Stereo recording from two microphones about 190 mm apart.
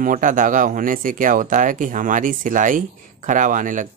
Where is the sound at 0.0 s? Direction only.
45° right (ahead or behind).